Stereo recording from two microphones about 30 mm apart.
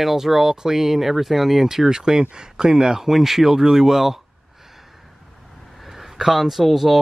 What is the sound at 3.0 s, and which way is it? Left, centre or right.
Speech, centre.